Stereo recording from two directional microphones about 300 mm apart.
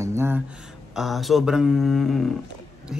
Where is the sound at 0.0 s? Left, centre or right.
Centre.